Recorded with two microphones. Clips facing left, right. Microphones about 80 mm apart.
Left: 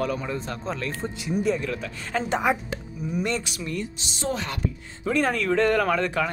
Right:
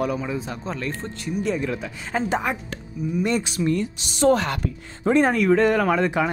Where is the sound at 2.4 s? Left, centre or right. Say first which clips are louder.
Left 3 dB; centre.